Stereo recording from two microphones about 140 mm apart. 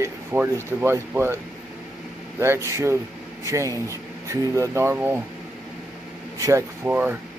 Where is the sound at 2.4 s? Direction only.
20° right (ahead or behind).